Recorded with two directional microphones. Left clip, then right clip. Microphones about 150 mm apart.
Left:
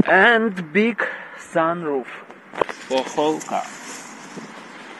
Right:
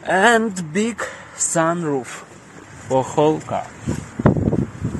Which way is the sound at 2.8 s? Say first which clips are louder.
Right 8 dB; 35° right (ahead or behind).